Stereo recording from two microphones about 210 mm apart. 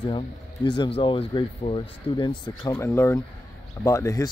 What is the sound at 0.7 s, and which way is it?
Speech, 25° left (ahead or behind).